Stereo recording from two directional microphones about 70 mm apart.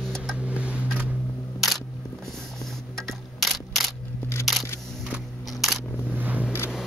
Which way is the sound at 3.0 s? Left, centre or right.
Centre.